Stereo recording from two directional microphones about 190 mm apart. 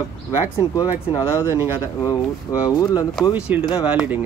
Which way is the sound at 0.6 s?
20° left (ahead or behind).